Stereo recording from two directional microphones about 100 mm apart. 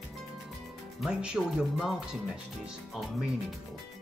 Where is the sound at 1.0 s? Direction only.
10° right (ahead or behind).